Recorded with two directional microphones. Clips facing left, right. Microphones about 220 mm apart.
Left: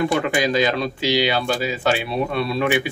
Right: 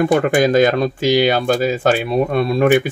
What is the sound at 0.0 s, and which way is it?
Speech, 50° right (ahead or behind).